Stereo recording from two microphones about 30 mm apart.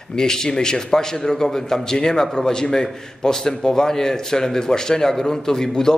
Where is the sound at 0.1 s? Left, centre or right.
Left.